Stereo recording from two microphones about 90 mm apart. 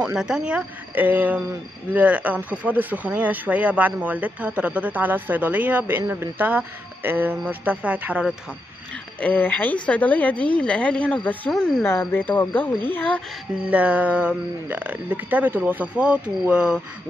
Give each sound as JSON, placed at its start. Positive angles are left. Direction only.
{"t": 0.0, "sound": "speech", "side_deg": -10}
{"t": 9.2, "sound": "speech", "side_deg": 15}
{"t": 11.5, "sound": "speech", "side_deg": 5}
{"t": 11.8, "sound": "speech", "side_deg": 25}
{"t": 13.7, "sound": "speech", "side_deg": -15}